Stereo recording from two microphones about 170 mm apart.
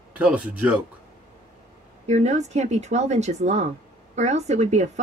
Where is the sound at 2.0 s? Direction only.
40° right (ahead or behind).